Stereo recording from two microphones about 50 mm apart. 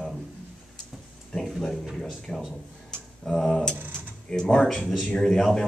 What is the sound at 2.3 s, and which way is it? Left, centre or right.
Speech, centre.